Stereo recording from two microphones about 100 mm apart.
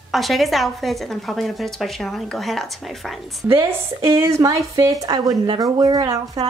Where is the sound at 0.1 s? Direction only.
Centre (ahead or behind).